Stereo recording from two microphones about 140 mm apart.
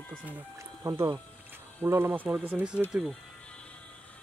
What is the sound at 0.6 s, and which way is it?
Music, 25° right (ahead or behind).